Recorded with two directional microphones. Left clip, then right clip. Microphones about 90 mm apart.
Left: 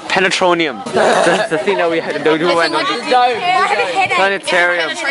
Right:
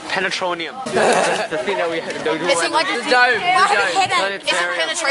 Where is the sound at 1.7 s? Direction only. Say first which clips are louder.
Left 6 dB; 45° left (ahead or behind).